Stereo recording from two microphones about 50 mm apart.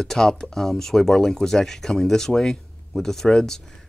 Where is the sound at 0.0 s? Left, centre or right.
Centre.